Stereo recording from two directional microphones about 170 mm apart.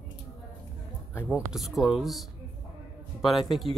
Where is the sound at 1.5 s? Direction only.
Centre (ahead or behind).